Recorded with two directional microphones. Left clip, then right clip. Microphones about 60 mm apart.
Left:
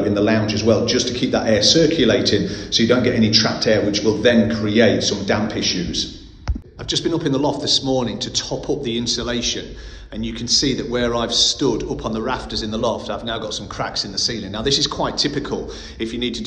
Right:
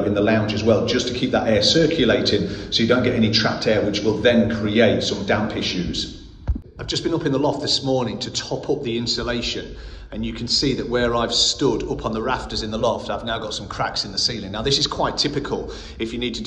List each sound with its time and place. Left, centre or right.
0.1 s a man's voice: left
8.8 s a man's voice: centre; by 14.4 s left
14.6 s a man's voice: left; by 16.3 s centre